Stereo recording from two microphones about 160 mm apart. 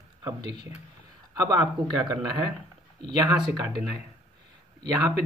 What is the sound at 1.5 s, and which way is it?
Speech, 25° right (ahead or behind).